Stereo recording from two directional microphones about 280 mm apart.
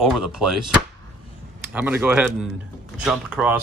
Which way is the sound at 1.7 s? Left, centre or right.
Centre.